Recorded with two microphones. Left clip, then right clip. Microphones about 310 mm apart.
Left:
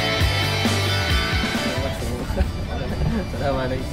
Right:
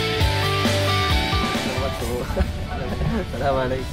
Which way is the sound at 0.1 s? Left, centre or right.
Centre.